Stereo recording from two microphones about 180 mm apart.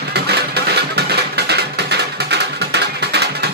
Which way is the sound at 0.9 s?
65° right (ahead or behind).